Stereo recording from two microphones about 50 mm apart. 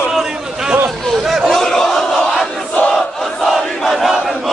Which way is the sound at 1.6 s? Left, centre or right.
Centre.